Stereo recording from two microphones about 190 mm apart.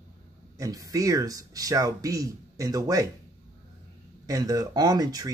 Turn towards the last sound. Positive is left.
turn(degrees=-20)  # may be behind; listen again after turning